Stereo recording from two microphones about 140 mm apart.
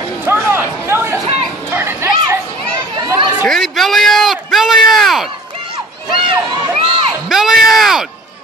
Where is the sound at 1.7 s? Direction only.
15° right (ahead or behind).